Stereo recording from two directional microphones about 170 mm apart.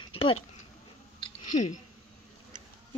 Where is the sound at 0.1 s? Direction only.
35° left (ahead or behind).